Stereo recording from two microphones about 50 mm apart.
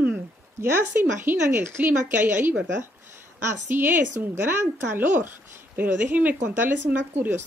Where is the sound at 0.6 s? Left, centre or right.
Right.